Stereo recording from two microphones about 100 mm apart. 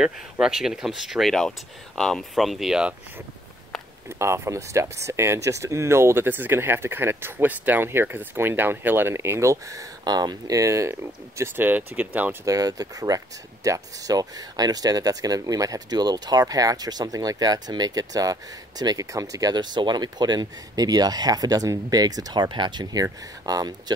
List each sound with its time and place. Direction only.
0.0 s speech: 5° right (ahead or behind)
4.2 s speech: 30° right (ahead or behind)
12.4 s speech: 40° right (ahead or behind)